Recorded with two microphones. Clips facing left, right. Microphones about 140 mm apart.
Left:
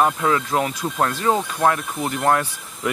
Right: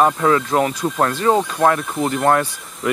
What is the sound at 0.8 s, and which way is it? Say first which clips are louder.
Speech: right 3 dB; centre (ahead or behind).